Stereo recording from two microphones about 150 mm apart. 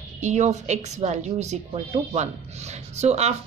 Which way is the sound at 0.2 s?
50° right (ahead or behind).